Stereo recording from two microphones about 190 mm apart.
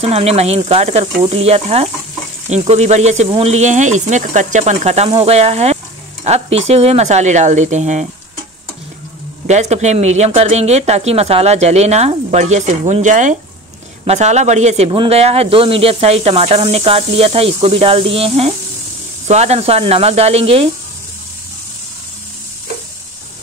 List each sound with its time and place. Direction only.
0.0 s a man's voice: 35° right (ahead or behind)
9.5 s a man's voice: 35° right (ahead or behind)